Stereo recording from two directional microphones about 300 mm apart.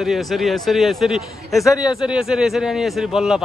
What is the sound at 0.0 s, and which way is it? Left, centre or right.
A man's voice, centre.